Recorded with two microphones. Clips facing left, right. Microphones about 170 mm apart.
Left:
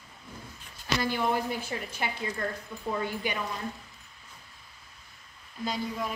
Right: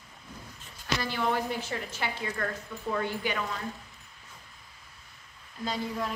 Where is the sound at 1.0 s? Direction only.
15° left (ahead or behind).